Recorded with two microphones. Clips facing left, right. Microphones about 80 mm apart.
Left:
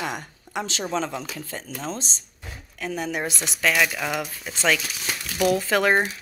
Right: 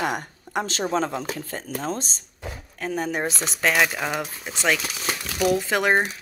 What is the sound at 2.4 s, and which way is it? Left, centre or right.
Speech, right.